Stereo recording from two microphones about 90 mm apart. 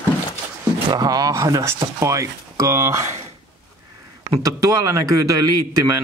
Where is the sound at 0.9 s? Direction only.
45° right (ahead or behind).